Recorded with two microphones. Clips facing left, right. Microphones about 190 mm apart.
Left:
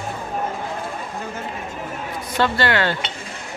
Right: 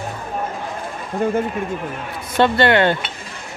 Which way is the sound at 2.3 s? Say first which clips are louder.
Right 5 dB; 20° right (ahead or behind).